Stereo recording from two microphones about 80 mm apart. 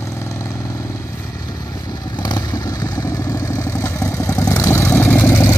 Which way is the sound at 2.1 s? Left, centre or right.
Left.